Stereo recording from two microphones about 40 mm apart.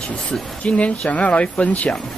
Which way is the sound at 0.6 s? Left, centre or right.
Left.